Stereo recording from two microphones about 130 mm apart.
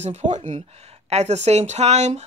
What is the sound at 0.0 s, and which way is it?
Speech, 60° right (ahead or behind).